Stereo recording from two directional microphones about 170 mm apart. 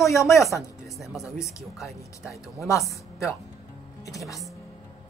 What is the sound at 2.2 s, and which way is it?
Speech, 15° left (ahead or behind).